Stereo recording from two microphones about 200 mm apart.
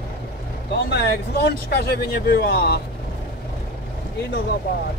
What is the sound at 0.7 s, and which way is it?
Speech, 55° left (ahead or behind).